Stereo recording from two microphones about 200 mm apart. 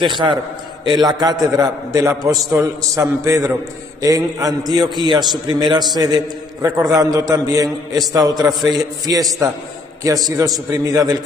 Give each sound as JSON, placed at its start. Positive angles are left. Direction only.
{"t": 0.0, "sound": "a man's voice", "side_deg": -25}